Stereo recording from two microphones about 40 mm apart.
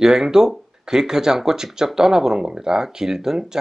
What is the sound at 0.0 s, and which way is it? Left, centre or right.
Speech, centre.